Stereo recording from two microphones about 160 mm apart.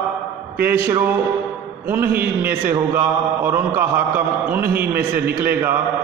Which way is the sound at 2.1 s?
70° right (ahead or behind).